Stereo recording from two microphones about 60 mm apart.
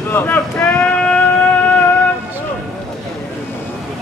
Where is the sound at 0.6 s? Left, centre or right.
Centre.